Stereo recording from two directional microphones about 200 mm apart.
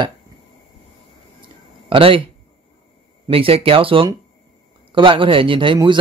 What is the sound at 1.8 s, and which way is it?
Speech, 25° right (ahead or behind).